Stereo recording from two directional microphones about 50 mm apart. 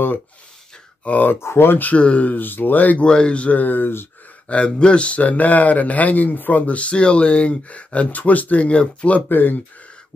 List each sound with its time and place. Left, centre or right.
1.0 s speech: left
1.4 s speech: left
1.7 s speech: left
2.0 s speech: left
2.3 s speech: left
3.1 s speech: centre; by 4.1 s left
4.5 s speech: left
9.3 s speech: left